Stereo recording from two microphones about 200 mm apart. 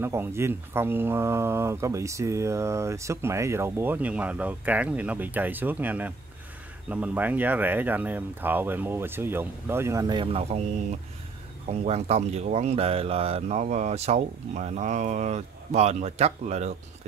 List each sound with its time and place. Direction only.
0.0 s speech: 10° right (ahead or behind); by 10.6 s 30° right (ahead or behind)
11.7 s speech: 30° right (ahead or behind)